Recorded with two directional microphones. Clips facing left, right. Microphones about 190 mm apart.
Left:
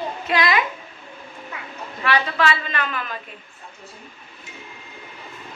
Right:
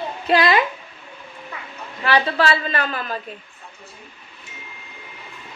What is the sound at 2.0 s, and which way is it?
A woman's voice, 30° right (ahead or behind).